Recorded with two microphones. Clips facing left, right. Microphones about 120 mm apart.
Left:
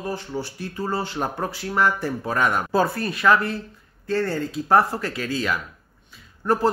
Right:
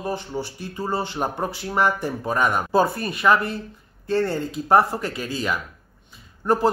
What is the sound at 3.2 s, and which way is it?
Speech, 20° right (ahead or behind).